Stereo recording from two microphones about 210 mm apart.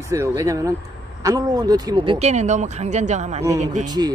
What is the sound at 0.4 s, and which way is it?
Speech, 15° right (ahead or behind).